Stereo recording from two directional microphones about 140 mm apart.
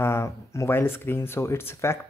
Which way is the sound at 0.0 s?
20° left (ahead or behind).